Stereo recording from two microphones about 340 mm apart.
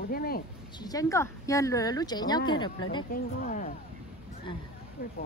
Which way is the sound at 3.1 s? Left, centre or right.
Left.